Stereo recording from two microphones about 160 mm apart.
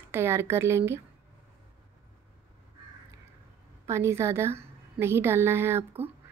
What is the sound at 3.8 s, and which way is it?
Speech, 15° right (ahead or behind).